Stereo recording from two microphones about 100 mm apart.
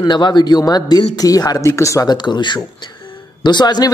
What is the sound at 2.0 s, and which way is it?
A man's voice, 50° left (ahead or behind).